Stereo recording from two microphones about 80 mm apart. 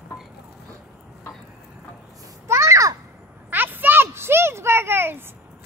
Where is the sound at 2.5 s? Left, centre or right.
Right.